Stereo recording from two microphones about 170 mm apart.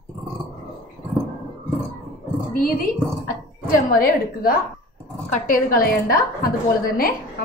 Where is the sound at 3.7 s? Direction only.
60° left (ahead or behind).